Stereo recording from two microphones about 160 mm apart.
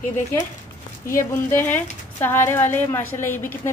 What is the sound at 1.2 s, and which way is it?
A woman's voice, 15° left (ahead or behind).